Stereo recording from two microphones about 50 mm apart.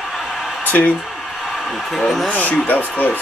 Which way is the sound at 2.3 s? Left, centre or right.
Left.